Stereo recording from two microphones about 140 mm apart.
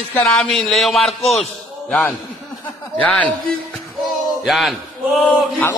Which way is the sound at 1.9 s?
5° left (ahead or behind).